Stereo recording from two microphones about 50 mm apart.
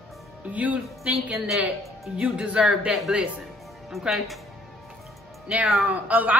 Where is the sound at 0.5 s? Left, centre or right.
Right.